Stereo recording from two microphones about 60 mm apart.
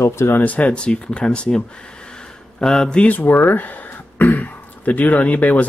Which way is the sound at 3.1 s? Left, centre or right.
Left.